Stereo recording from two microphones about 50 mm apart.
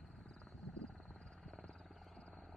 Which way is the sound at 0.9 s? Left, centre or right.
Centre.